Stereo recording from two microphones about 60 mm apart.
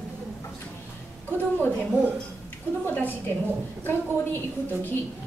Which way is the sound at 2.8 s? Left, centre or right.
Left.